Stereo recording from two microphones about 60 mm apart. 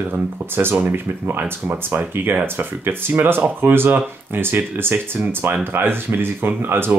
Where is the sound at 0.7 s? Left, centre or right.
Right.